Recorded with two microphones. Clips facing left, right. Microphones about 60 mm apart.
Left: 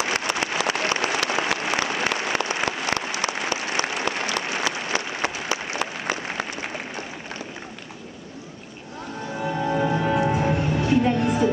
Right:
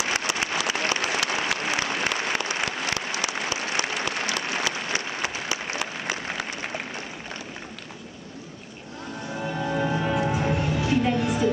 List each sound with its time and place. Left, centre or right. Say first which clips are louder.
0.1 s applause: left 2 dB; left
3.2 s applause: left 2 dB; left
9.4 s music: left 3 dB; centre